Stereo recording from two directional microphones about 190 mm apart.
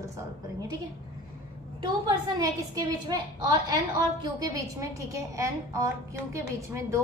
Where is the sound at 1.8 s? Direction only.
20° right (ahead or behind).